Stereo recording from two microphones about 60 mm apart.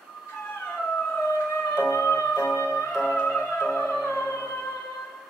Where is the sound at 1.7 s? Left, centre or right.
Left.